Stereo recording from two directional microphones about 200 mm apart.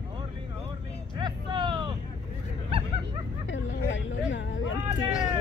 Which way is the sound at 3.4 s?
65° left (ahead or behind).